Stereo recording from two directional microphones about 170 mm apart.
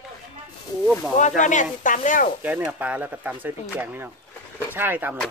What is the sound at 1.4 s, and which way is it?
Speech, 45° left (ahead or behind).